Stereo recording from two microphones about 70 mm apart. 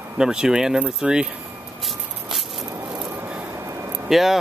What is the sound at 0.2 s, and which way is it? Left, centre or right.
Speech, centre.